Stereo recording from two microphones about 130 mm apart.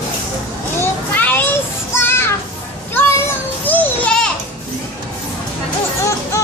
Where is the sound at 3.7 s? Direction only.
15° left (ahead or behind).